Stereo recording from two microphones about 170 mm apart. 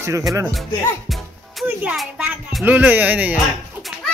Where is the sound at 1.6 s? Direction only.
5° right (ahead or behind).